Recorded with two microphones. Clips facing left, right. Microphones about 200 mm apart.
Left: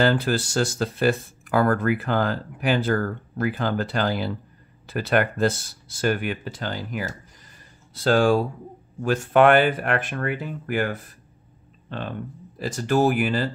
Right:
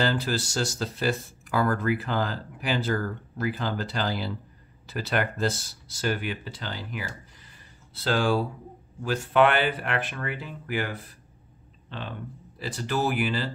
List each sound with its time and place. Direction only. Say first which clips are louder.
0.0 s speech: left 5 dB; 55° left (ahead or behind)